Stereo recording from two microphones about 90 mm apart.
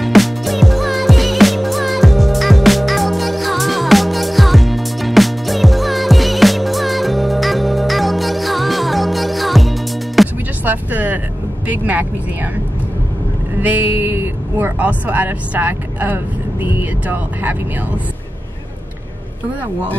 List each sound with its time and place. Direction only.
0.0 s music: centre (ahead or behind)
10.6 s vehicle: 20° right (ahead or behind)
13.6 s vehicle: 20° right (ahead or behind)
16.6 s speech: 20° right (ahead or behind)